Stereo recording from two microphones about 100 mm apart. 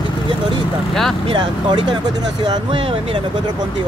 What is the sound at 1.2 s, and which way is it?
Speech, 60° right (ahead or behind).